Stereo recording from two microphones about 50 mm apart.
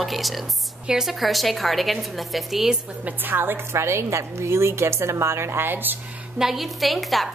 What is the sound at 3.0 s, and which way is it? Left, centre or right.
Speech, right.